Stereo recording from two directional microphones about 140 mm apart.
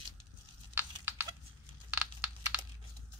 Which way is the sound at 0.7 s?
15° right (ahead or behind).